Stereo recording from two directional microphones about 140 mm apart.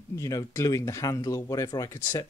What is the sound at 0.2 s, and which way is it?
Speech, 25° left (ahead or behind).